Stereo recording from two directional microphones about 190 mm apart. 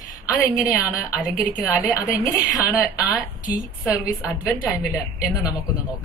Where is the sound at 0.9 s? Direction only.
20° left (ahead or behind).